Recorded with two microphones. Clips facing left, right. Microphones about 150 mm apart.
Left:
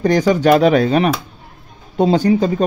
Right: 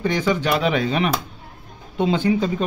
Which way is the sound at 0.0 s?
40° left (ahead or behind).